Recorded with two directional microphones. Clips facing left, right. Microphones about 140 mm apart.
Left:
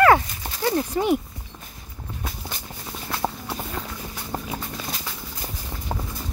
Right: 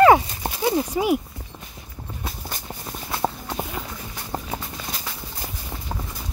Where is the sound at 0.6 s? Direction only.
10° right (ahead or behind).